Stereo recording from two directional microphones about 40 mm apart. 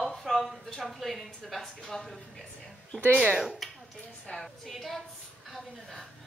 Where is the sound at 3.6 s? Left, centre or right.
Centre.